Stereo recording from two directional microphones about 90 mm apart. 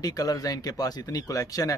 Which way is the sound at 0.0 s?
45° left (ahead or behind).